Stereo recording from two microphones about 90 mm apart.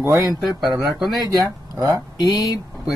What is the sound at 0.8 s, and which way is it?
Speech, centre (ahead or behind).